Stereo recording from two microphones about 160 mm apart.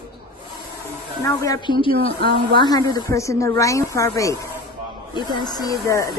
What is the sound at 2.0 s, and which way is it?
Speech, 30° left (ahead or behind).